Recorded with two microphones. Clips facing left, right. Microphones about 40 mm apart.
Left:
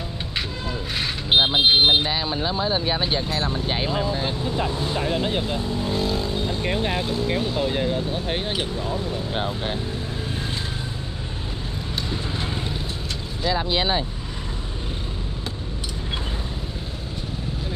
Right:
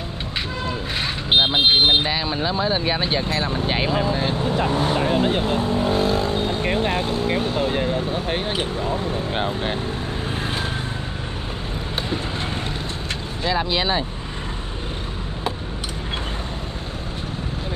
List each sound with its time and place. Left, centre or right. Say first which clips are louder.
0.7 s speech: right 2 dB; centre
4.4 s speech: right 4 dB; right
5.4 s vehicle: right 5 dB; right
6.8 s vehicle: right 3 dB; centre
7.1 s speech: right 2 dB; right
9.3 s speech: right 2 dB; centre
10.3 s vehicle: right 4 dB; right